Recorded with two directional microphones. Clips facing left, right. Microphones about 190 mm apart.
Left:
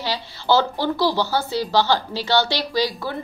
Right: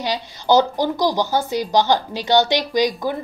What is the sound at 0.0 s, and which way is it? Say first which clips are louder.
Speech: right 3 dB; 15° right (ahead or behind).